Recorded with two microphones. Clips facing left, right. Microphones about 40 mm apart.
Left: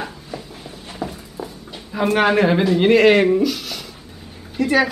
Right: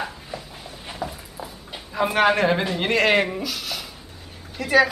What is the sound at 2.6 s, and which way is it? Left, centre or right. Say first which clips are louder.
Speech: left 8 dB; centre.